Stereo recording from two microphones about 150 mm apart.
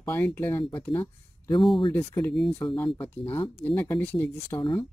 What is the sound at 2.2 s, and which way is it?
Speech, 10° left (ahead or behind).